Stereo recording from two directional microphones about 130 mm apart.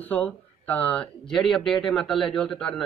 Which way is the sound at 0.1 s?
15° left (ahead or behind).